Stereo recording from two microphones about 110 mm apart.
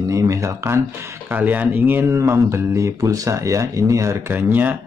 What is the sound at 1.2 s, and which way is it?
Speech, 15° right (ahead or behind).